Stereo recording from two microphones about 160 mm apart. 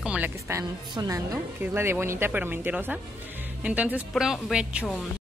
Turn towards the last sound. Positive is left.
turn(degrees=0)  # may be behind; listen again after turning